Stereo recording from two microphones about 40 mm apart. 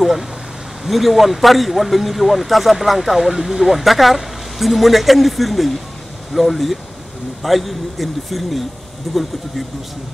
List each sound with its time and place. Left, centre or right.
0.8 s speech: centre